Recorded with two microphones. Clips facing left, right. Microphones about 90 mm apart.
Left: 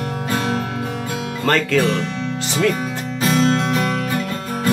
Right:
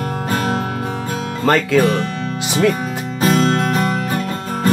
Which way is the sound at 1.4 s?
15° right (ahead or behind).